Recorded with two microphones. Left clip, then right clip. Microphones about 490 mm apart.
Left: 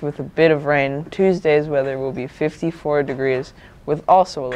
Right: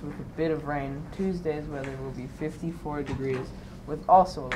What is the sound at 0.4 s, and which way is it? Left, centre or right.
Speech, left.